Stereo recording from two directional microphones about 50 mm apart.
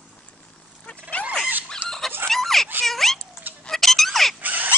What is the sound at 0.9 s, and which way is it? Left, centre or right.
Dog, left.